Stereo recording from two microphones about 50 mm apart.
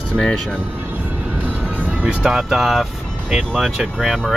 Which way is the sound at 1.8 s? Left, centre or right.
Right.